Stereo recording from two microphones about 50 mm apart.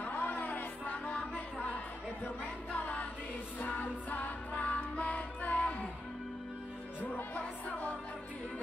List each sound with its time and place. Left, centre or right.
0.0 s music: left
2.7 s music: left
7.0 s music: left